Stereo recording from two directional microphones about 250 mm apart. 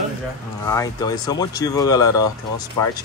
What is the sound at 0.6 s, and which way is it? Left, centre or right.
Speech, centre.